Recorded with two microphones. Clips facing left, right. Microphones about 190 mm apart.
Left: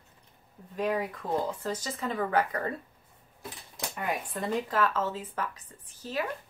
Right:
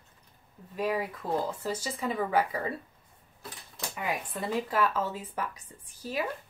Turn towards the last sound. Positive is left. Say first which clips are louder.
# even
turn(degrees=-10)  # may be behind; listen again after turning